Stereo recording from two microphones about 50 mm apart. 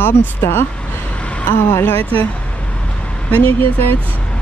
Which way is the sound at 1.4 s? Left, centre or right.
Left.